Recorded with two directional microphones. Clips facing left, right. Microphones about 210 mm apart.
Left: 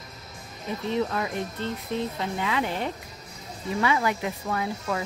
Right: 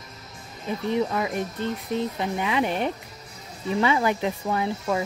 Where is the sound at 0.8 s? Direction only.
15° right (ahead or behind).